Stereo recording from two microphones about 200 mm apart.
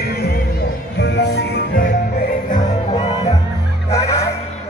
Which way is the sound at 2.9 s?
30° left (ahead or behind).